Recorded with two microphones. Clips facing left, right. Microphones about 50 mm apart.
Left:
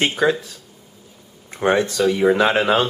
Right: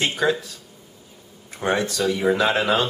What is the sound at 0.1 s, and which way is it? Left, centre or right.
Speech, centre.